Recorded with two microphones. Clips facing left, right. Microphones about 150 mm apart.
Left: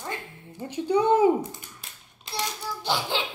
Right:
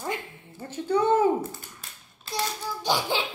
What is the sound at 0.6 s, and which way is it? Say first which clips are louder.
Speech: left 1 dB; 15° left (ahead or behind).